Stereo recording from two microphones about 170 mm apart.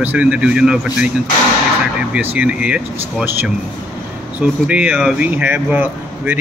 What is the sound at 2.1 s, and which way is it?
Speech, 10° right (ahead or behind).